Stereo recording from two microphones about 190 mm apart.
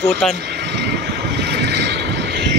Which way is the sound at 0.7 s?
60° right (ahead or behind).